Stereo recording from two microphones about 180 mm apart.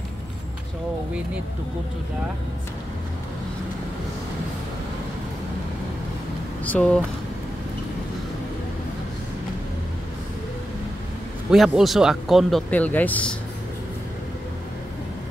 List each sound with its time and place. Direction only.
6.6 s speech: 10° left (ahead or behind)
11.5 s speech: centre (ahead or behind)